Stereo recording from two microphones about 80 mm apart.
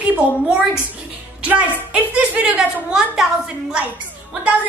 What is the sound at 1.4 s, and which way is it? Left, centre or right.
A woman's voice, centre.